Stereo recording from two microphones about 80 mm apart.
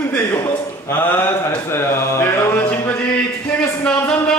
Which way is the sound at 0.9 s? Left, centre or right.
Left.